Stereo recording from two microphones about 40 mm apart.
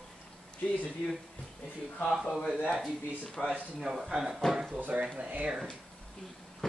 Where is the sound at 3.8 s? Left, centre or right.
Centre.